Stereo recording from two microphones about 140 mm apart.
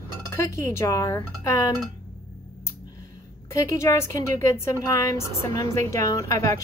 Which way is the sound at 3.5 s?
20° left (ahead or behind).